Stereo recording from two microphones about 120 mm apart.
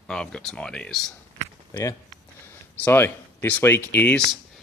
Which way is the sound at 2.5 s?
20° left (ahead or behind).